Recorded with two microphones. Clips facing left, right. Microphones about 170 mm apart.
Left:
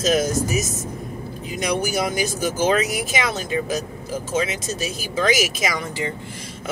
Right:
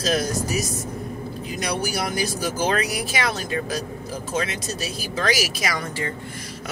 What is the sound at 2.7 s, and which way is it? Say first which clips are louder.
Speech: left 5 dB; 25° left (ahead or behind).